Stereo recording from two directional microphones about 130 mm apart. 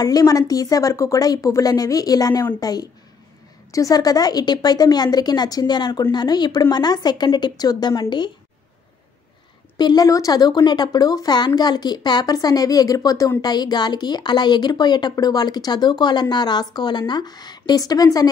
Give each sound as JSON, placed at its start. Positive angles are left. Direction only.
{"t": 0.0, "sound": "a woman's voice", "side_deg": 30}
{"t": 9.8, "sound": "speech", "side_deg": 30}